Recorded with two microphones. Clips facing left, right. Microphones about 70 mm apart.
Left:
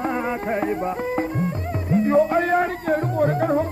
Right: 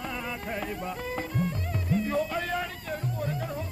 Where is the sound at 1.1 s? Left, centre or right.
Left.